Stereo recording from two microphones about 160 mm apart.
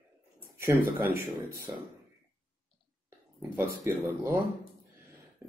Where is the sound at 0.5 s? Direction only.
15° right (ahead or behind).